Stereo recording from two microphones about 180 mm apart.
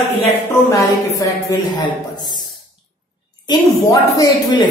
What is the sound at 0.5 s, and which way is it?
A woman's voice, 15° left (ahead or behind).